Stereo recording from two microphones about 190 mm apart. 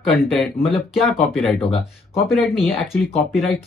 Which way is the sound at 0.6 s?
Centre (ahead or behind).